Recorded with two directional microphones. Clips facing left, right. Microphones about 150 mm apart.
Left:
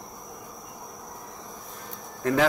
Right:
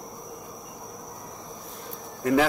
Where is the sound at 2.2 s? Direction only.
10° right (ahead or behind).